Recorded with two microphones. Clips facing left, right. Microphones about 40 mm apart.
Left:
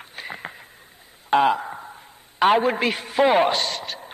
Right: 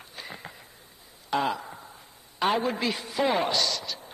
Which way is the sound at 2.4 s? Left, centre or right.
Left.